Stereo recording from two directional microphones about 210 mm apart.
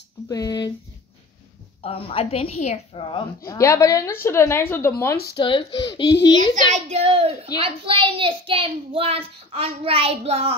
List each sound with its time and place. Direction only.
0.3 s a woman's voice: 20° left (ahead or behind)
1.8 s a woman's voice: 25° left (ahead or behind)
3.4 s a woman's voice: 15° left (ahead or behind)
5.3 s a woman's voice: 25° left (ahead or behind)
6.7 s a child's voice: 30° right (ahead or behind)